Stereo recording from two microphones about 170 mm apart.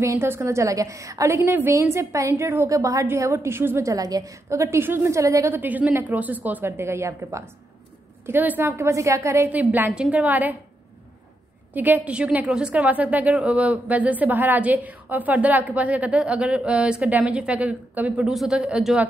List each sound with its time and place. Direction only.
0.0 s a woman's voice: 15° right (ahead or behind)
11.7 s a woman's voice: 10° right (ahead or behind)